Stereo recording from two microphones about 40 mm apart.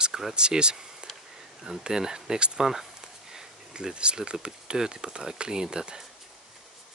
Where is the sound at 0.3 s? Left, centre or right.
Right.